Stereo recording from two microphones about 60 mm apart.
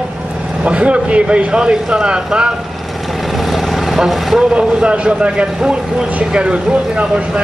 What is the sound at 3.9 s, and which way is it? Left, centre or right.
Speech, centre.